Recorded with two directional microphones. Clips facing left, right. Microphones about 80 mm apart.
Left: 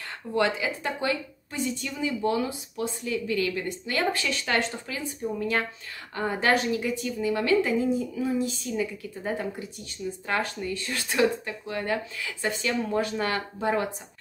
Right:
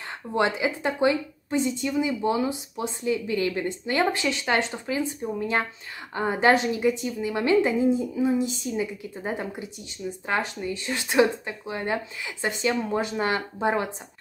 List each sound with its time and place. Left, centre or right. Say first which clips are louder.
0.3 s a woman's voice: right 2 dB; right